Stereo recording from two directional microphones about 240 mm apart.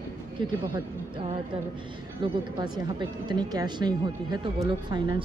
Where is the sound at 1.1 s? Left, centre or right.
Right.